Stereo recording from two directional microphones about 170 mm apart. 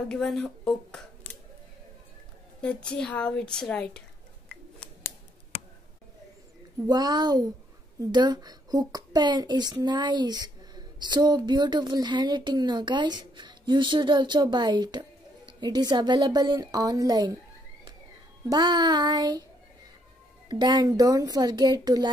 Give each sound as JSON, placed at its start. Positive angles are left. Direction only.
{"t": 0.1, "sound": "a woman's voice", "side_deg": 5}
{"t": 2.6, "sound": "a woman's voice", "side_deg": 5}
{"t": 6.9, "sound": "a child's voice", "side_deg": -25}
{"t": 18.4, "sound": "a child's voice", "side_deg": -25}
{"t": 20.4, "sound": "a child's voice", "side_deg": -25}